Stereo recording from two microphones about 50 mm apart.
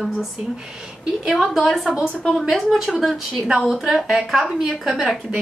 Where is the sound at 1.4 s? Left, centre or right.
Centre.